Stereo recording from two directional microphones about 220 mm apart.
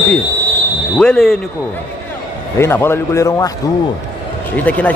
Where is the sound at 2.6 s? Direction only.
10° left (ahead or behind).